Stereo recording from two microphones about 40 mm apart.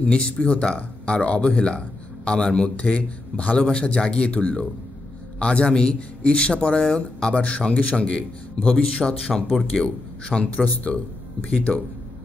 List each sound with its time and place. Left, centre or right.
0.1 s speech: left
0.7 s speech: left
2.7 s speech: left
3.5 s speech: left
7.3 s speech: left
9.3 s speech: centre
10.2 s speech: left